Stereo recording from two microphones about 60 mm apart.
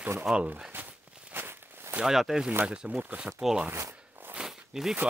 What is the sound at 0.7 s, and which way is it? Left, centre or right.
Walk, right.